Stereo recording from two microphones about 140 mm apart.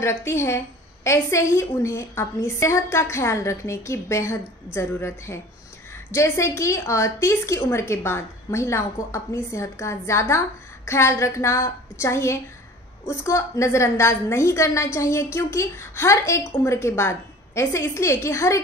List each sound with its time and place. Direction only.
0.0 s a woman's voice: 20° left (ahead or behind)